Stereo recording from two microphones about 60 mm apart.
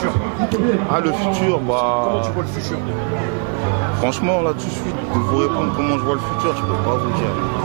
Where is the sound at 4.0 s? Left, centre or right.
Centre.